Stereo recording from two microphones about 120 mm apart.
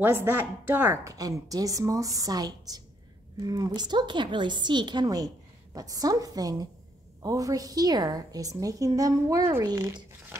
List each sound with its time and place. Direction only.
0.0 s a woman's voice: 20° right (ahead or behind)
1.0 s a woman's voice: 30° right (ahead or behind)